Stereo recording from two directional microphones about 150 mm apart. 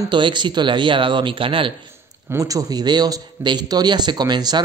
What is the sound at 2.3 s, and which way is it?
Speech, 20° right (ahead or behind).